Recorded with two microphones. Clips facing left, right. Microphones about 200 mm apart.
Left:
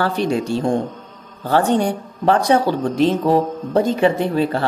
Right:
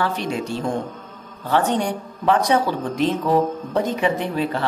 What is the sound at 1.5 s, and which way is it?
Speech, 30° left (ahead or behind).